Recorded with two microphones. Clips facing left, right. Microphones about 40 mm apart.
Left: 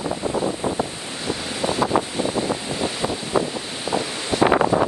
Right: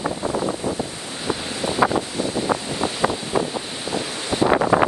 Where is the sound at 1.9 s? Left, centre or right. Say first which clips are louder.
Left 2 dB; left.